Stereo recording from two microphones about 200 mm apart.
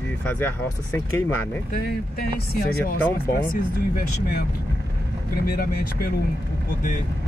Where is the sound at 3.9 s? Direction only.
50° left (ahead or behind).